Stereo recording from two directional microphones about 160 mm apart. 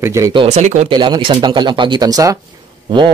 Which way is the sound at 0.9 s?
30° right (ahead or behind).